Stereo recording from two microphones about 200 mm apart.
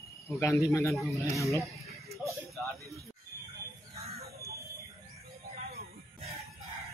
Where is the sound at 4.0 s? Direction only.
30° right (ahead or behind).